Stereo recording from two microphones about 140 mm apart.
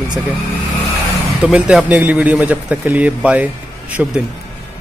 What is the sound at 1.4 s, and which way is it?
A man's voice, 5° right (ahead or behind).